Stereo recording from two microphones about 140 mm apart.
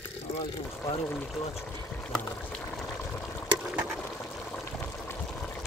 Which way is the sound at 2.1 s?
5° left (ahead or behind).